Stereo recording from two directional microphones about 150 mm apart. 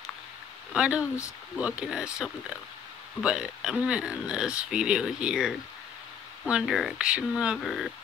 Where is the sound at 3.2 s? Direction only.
5° right (ahead or behind).